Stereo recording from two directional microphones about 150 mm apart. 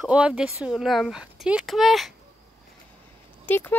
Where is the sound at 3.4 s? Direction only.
15° left (ahead or behind).